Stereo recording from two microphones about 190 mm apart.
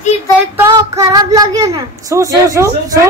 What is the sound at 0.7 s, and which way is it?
Speech, 20° right (ahead or behind).